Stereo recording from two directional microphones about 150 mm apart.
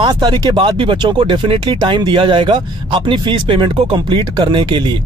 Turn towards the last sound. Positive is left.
turn(degrees=-30)  # may be behind; listen again after turning